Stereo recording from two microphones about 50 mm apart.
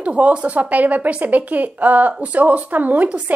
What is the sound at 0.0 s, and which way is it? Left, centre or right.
A woman's voice, right.